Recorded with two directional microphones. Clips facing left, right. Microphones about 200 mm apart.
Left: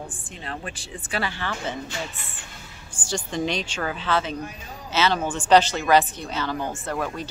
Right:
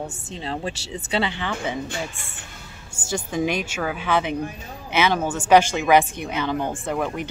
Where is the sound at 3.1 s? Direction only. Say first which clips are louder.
Right 3 dB; 10° right (ahead or behind).